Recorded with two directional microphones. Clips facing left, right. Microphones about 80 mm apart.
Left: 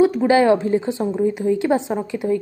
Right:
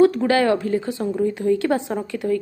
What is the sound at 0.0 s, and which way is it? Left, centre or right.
Speech, centre.